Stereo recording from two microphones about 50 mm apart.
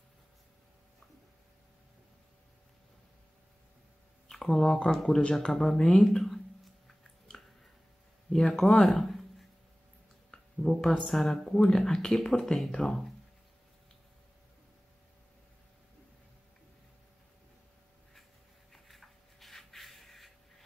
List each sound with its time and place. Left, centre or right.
4.3 s speech: centre
5.5 s speech: centre
5.8 s speech: centre
6.1 s a sound: centre
8.3 s speech: centre
8.8 s speech: centre
10.3 s speech: centre
18.7 s a sound: centre